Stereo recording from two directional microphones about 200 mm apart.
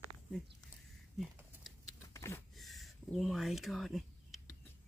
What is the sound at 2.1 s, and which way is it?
Power windows, 15° left (ahead or behind).